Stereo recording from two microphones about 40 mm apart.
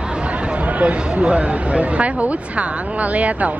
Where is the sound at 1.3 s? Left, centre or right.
Right.